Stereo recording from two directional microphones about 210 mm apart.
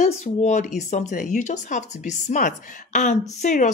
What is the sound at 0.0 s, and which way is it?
Speech, 35° left (ahead or behind).